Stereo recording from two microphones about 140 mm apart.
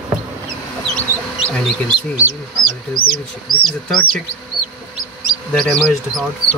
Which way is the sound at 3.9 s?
5° left (ahead or behind).